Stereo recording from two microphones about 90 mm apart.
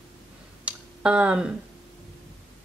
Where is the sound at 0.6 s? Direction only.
10° right (ahead or behind).